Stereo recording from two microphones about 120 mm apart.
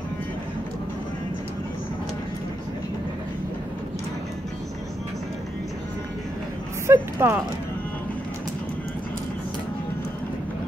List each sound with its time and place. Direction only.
6.9 s speech: 20° right (ahead or behind)